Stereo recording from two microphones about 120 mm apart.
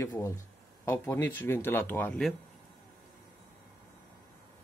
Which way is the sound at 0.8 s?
15° left (ahead or behind).